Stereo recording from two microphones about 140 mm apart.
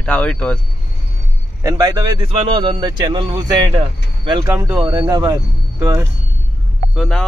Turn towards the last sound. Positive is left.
turn(degrees=5)  # may be behind; listen again after turning